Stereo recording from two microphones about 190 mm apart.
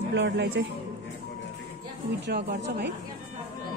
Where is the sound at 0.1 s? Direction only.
75° right (ahead or behind).